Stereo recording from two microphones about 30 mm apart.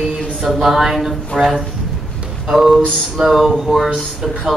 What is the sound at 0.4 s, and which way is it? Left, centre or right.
Speech, centre.